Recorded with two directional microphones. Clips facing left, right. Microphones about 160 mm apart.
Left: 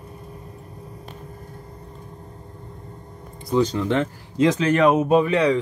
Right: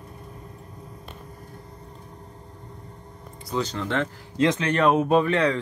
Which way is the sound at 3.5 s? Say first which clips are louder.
Left 6 dB; 15° left (ahead or behind).